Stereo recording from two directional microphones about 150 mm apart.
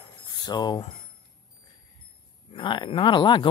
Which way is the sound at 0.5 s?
30° left (ahead or behind).